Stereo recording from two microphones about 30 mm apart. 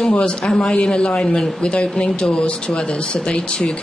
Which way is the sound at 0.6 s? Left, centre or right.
Left.